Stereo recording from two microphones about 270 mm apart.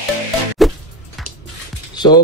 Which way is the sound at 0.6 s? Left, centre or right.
Centre.